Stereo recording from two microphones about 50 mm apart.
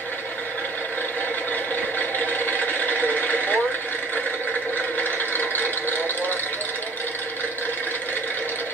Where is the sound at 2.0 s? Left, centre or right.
Left.